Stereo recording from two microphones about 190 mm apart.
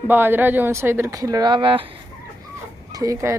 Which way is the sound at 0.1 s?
10° right (ahead or behind).